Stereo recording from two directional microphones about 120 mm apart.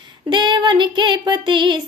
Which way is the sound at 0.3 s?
40° right (ahead or behind).